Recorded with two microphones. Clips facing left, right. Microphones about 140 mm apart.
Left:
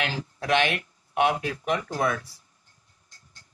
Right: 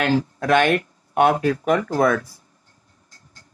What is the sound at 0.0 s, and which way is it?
Speech, 45° right (ahead or behind).